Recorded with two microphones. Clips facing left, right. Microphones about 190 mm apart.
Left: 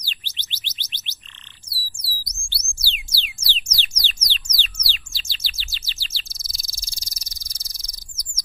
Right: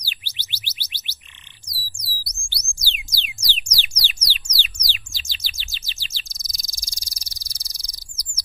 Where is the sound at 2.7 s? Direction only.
15° right (ahead or behind).